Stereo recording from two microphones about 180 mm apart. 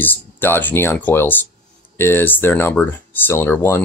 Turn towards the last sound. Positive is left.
turn(degrees=10)  # may be behind; listen again after turning